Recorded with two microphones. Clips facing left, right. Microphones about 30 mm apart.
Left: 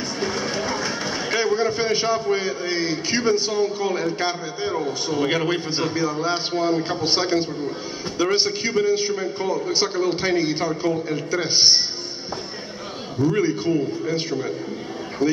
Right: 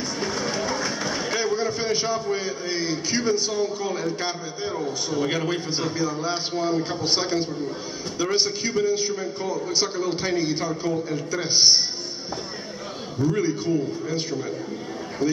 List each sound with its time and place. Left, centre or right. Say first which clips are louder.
0.2 s a man's voice: left 2 dB; centre
13.2 s a man's voice: left 3 dB; centre